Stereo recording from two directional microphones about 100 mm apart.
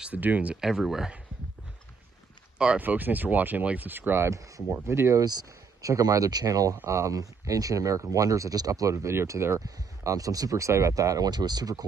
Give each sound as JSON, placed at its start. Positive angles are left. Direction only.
{"t": 0.0, "sound": "speech", "side_deg": -15}
{"t": 2.6, "sound": "speech", "side_deg": -15}
{"t": 5.2, "sound": "speech", "side_deg": -40}